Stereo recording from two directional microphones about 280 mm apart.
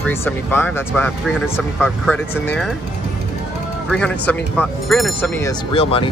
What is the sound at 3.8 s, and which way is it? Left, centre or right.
Speech, centre.